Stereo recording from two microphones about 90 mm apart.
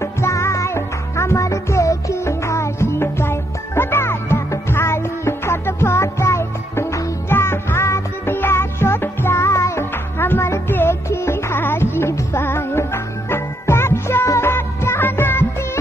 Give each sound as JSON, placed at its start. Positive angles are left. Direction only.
{"t": 0.0, "sound": "music", "side_deg": 35}